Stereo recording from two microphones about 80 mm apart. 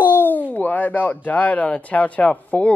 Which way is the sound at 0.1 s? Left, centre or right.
Left.